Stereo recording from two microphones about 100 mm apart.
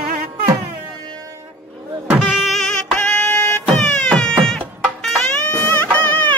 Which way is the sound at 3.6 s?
5° left (ahead or behind).